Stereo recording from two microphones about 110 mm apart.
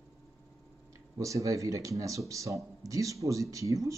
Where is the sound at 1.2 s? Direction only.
30° right (ahead or behind).